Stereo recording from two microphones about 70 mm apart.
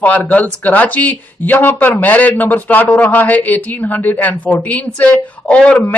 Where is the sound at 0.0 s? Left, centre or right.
Left.